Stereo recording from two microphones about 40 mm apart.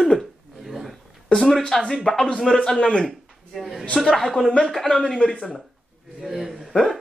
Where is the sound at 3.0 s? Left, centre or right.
Centre.